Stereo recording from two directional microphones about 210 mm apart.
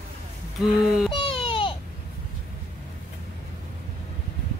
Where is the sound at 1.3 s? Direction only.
25° left (ahead or behind).